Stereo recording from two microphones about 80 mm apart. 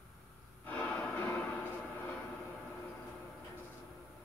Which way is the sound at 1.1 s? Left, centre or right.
Left.